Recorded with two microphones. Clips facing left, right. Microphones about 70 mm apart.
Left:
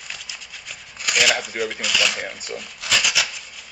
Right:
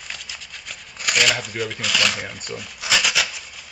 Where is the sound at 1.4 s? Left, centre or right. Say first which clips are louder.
Left 1 dB; centre.